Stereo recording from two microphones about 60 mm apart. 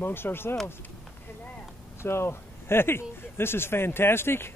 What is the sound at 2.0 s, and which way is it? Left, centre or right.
Speech, left.